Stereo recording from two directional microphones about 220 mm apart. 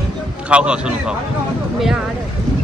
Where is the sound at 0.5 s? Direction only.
5° right (ahead or behind).